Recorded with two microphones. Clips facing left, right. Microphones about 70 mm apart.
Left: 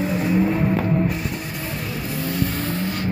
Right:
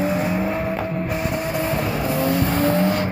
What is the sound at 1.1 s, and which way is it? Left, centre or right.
Music, right.